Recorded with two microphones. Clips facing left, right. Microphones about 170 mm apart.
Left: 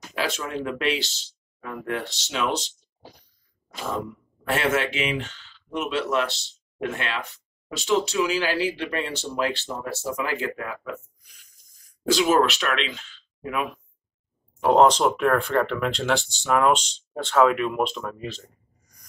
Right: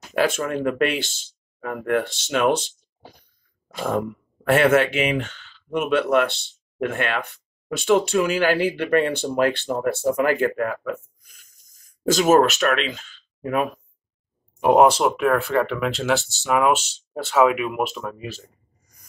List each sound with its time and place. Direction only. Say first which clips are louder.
0.1 s speech: right 7 dB; 50° right (ahead or behind)
3.7 s speech: right 6 dB; 55° right (ahead or behind)
14.6 s speech: right 2 dB; 10° right (ahead or behind)